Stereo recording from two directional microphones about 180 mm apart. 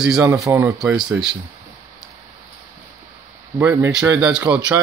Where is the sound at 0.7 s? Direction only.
5° right (ahead or behind).